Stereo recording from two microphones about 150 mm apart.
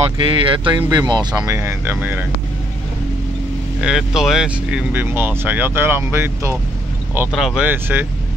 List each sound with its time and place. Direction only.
0.2 s speech: 35° right (ahead or behind); by 2.2 s 15° right (ahead or behind)
3.8 s speech: 5° right (ahead or behind)
7.3 s speech: 5° right (ahead or behind)